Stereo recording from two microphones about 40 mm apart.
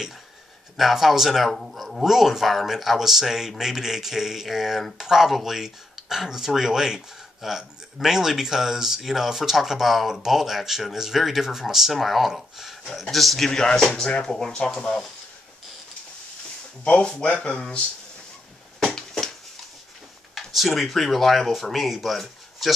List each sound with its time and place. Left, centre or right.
0.7 s a man's voice: centre
13.5 s speech: centre
16.8 s speech: left
18.9 s a sound: centre
20.3 s speech: centre